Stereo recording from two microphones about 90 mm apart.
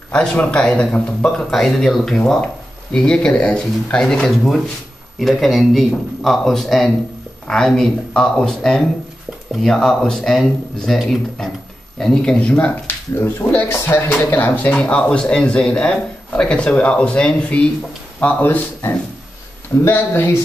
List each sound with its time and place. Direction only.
0.1 s speech: 10° left (ahead or behind)
1.5 s speech: centre (ahead or behind); by 20.3 s 25° left (ahead or behind)